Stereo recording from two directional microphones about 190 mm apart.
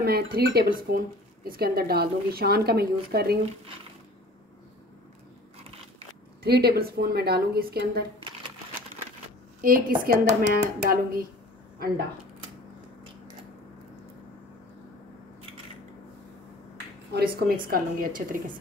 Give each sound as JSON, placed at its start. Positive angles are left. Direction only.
{"t": 0.0, "sound": "speech", "side_deg": -55}
{"t": 6.4, "sound": "speech", "side_deg": -55}
{"t": 9.6, "sound": "a woman's voice", "side_deg": -50}
{"t": 17.1, "sound": "a woman's voice", "side_deg": -55}